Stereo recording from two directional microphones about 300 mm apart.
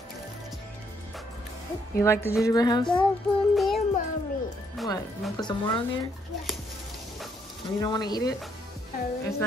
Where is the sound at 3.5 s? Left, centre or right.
Centre.